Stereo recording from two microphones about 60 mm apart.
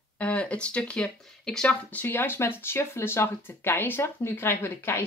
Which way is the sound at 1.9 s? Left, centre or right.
Left.